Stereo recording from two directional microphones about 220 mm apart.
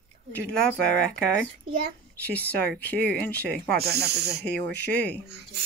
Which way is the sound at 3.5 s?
45° right (ahead or behind).